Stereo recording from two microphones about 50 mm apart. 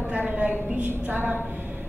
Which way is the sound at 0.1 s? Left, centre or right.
Right.